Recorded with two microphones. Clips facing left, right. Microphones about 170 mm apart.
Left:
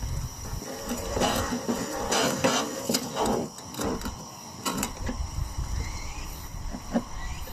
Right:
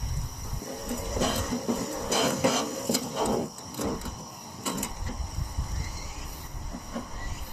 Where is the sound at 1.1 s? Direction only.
65° left (ahead or behind).